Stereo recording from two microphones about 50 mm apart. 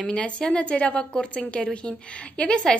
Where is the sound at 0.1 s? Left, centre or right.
Centre.